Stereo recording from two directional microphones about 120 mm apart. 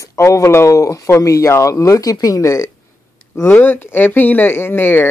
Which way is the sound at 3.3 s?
15° left (ahead or behind).